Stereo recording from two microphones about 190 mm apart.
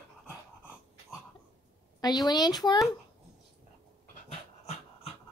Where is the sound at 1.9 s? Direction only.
20° left (ahead or behind).